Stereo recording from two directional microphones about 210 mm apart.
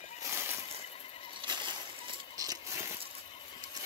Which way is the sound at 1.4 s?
20° right (ahead or behind).